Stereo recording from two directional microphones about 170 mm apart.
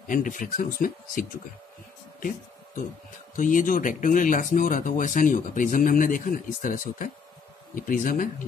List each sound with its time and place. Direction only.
0.0 s speech: 50° left (ahead or behind)
2.1 s a sound: 55° left (ahead or behind)
3.3 s speech: 50° left (ahead or behind)